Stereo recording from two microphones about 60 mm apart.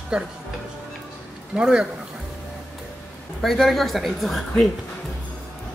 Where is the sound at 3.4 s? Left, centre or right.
Centre.